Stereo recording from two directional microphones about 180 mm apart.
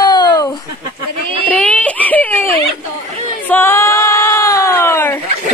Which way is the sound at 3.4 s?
10° left (ahead or behind).